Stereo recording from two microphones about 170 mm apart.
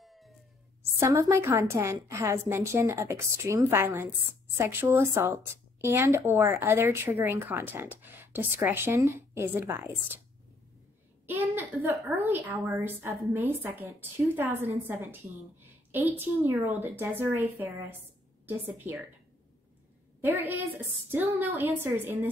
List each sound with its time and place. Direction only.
0.0 s a sound: centre (ahead or behind)
0.9 s speech: 15° right (ahead or behind)
11.2 s speech: 10° right (ahead or behind)
20.2 s speech: 10° right (ahead or behind)